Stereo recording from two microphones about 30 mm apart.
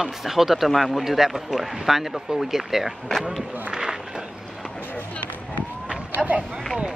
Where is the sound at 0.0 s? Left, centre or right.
Centre.